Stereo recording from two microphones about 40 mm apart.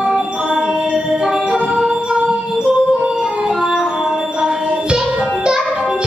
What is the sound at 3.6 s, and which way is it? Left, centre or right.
Music, centre.